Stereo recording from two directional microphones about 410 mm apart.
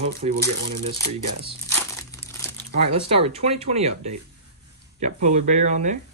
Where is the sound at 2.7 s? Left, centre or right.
Centre.